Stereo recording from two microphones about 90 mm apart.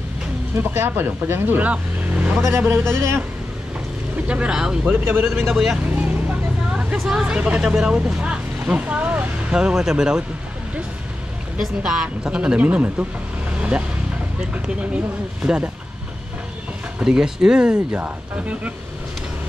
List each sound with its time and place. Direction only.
0.6 s speech: 25° right (ahead or behind)
2.6 s speech: 30° right (ahead or behind)
4.3 s speech: 10° right (ahead or behind)
4.8 s speech: 25° right (ahead or behind)
5.3 s speech: centre (ahead or behind)
7.0 s speech: 5° right (ahead or behind)
11.5 s speech: 10° right (ahead or behind)
13.6 s vehicle: 15° right (ahead or behind)
14.5 s speech: 15° right (ahead or behind)
17.0 s speech: 5° right (ahead or behind)